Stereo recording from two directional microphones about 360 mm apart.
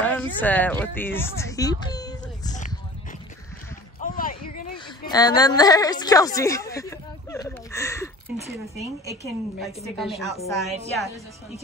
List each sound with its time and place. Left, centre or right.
0.0 s a sound: centre
5.4 s a woman's voice: centre
9.2 s a woman's voice: centre